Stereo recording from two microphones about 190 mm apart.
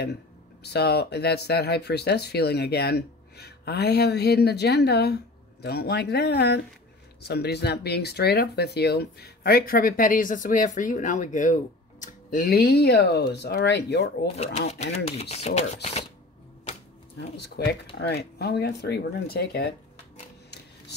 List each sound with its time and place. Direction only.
0.7 s speech: 60° left (ahead or behind)
14.3 s speech: 35° left (ahead or behind)
17.4 s speech: 60° left (ahead or behind)